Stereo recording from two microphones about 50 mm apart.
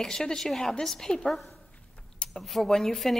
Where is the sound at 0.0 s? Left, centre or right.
Centre.